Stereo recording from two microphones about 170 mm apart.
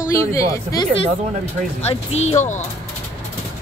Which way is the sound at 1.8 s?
40° left (ahead or behind).